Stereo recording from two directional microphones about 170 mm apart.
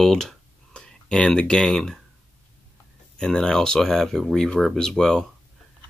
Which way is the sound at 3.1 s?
5° left (ahead or behind).